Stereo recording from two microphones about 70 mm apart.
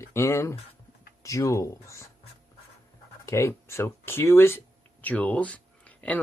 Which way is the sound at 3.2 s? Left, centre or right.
Left.